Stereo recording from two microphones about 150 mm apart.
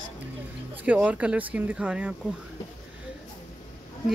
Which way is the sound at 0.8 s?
10° right (ahead or behind).